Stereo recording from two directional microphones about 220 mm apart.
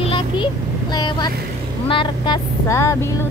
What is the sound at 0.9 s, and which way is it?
Speech, 20° left (ahead or behind).